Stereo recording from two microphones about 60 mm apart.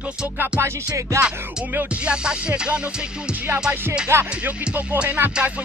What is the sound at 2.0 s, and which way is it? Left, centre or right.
Music, centre.